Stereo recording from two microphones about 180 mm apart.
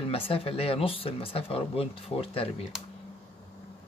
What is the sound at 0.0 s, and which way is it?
Speech, 30° left (ahead or behind).